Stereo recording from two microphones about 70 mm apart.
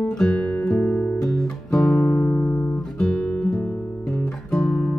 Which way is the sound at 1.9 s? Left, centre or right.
Left.